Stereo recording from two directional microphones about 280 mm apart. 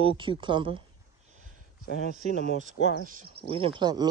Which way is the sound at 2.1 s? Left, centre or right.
Right.